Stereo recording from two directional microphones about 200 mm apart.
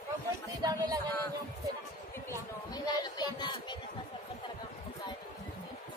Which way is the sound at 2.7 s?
20° left (ahead or behind).